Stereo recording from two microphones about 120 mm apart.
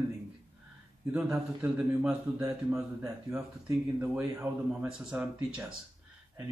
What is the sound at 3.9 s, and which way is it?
Speech, 15° right (ahead or behind).